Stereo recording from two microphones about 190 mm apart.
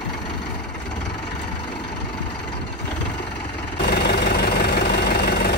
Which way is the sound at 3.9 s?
60° left (ahead or behind).